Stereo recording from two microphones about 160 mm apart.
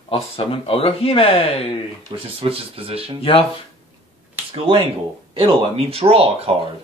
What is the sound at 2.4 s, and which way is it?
Speech, 35° right (ahead or behind).